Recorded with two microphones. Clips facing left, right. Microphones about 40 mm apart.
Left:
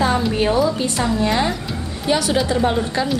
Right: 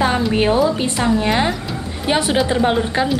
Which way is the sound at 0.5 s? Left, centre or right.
Centre.